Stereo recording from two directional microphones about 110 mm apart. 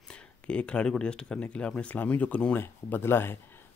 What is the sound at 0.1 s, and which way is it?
Speech, 10° left (ahead or behind).